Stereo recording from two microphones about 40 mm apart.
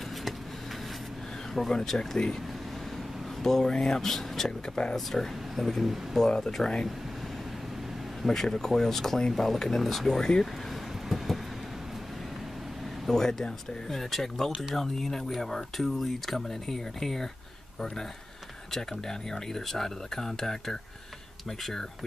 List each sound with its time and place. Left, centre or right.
1.5 s speech: centre
3.4 s speech: centre
6.1 s speech: centre
8.2 s speech: centre
13.1 s speech: centre
18.7 s speech: centre